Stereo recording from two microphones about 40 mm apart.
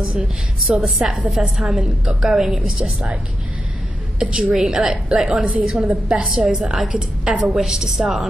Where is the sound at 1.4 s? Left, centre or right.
Right.